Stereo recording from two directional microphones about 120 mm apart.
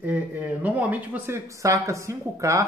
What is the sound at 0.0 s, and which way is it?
Speech, 15° right (ahead or behind).